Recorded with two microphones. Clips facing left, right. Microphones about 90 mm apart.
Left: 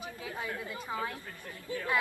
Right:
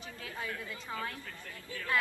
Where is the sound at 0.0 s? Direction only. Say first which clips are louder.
Left 3 dB; 20° left (ahead or behind).